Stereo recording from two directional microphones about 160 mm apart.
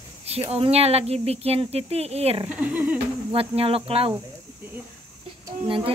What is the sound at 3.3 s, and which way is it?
Speech, 35° right (ahead or behind).